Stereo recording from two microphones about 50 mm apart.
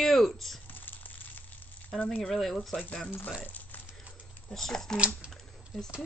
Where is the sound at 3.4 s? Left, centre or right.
Left.